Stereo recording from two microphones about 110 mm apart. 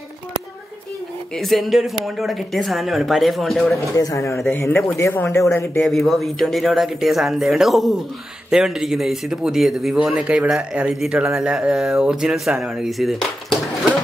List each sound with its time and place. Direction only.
1.3 s a man's voice: centre (ahead or behind)
3.9 s speech: 30° left (ahead or behind)
5.8 s a man's voice: centre (ahead or behind)